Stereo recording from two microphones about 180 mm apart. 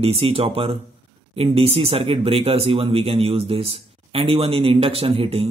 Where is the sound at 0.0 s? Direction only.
35° right (ahead or behind).